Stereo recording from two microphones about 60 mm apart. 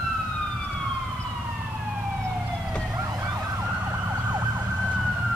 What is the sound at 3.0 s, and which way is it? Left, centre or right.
Emergency vehicle, right.